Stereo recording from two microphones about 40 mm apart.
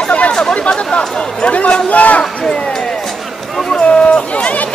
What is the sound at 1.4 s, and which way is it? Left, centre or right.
Speech, left.